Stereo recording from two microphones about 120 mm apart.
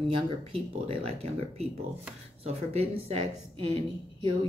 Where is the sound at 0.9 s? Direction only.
55° right (ahead or behind).